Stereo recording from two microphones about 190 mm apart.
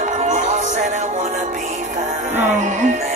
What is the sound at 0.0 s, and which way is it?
Music, 40° right (ahead or behind).